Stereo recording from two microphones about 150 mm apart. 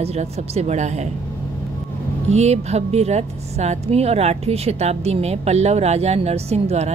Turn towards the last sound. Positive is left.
turn(degrees=-45)  # may be behind; listen again after turning